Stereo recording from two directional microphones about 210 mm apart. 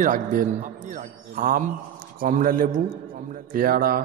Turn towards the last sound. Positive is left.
turn(degrees=-45)  # may be behind; listen again after turning